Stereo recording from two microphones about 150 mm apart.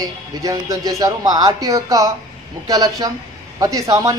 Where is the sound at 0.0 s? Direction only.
25° right (ahead or behind).